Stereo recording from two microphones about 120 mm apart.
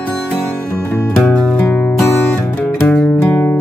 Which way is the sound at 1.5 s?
10° left (ahead or behind).